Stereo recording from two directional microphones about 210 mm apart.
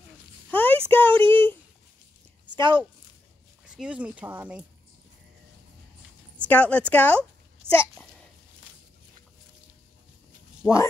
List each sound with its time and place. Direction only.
0.5 s a sound: 10° left (ahead or behind)
2.5 s speech: 20° right (ahead or behind)
3.6 s speech: 5° right (ahead or behind)
6.3 s speech: 5° left (ahead or behind)
10.6 s speech: centre (ahead or behind)